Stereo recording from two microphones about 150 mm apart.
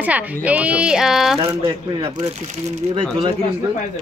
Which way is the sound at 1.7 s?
40° right (ahead or behind).